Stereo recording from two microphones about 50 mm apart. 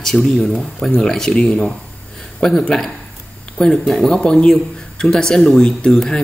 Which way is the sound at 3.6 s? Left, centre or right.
Centre.